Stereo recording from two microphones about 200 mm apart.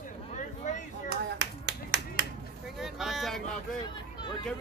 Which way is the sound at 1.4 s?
60° right (ahead or behind).